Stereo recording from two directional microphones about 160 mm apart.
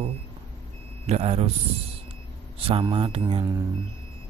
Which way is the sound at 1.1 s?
40° right (ahead or behind).